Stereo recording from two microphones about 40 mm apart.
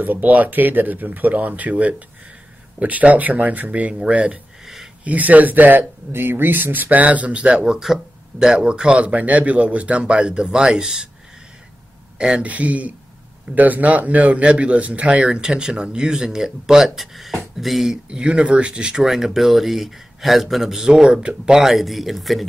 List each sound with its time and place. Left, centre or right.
0.0 s speech: right
7.6 s a man's voice: centre
12.2 s a man's voice: right
12.4 s speech: right; by 17.9 s centre
18.1 s a man's voice: right
21.5 s speech: centre